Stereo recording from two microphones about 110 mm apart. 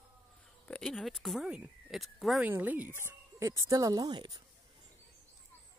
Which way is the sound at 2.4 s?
15° right (ahead or behind).